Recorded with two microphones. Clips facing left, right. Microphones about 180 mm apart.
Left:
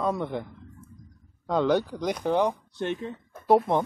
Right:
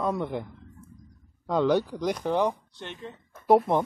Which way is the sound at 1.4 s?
Centre (ahead or behind).